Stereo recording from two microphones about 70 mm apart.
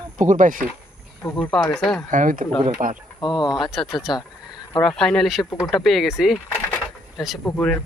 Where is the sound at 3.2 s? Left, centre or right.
Left.